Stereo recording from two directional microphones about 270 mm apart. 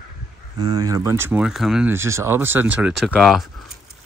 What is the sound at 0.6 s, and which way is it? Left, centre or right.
Speech, centre.